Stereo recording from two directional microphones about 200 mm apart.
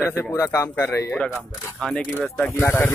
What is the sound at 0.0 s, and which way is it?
Speech, 10° left (ahead or behind).